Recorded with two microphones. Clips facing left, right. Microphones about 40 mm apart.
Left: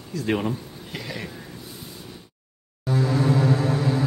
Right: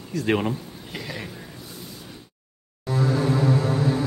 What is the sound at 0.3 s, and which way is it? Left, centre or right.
Speech, centre.